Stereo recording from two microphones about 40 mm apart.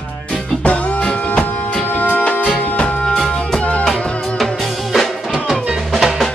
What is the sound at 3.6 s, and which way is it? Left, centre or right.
Music, left.